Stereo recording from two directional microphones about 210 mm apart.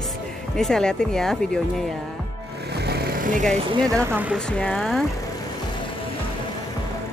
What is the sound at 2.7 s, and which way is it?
Music, 50° right (ahead or behind).